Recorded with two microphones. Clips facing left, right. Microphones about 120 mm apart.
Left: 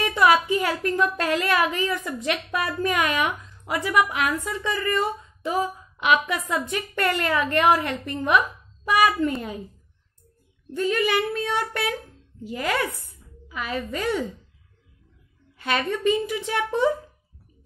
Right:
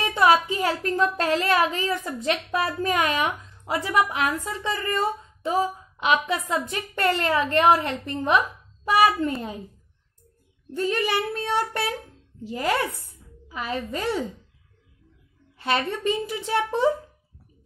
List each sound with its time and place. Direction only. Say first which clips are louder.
0.0 s a woman's voice: even; 30° right (ahead or behind)
10.7 s a woman's voice: left 2 dB; 35° right (ahead or behind)
15.5 s a woman's voice: even; 30° right (ahead or behind)